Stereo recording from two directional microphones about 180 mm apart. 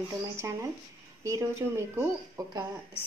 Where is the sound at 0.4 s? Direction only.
15° right (ahead or behind).